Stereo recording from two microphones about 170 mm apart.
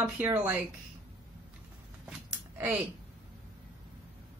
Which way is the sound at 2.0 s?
10° right (ahead or behind).